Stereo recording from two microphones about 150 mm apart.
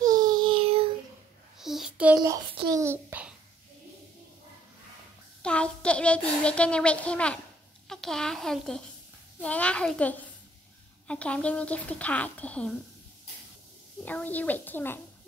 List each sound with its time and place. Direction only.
0.0 s child singing: 25° right (ahead or behind)
1.6 s child singing: centre (ahead or behind)
2.7 s a child's voice: 15° right (ahead or behind)
5.4 s a child's voice: 5° left (ahead or behind)
14.0 s speech: 10° left (ahead or behind)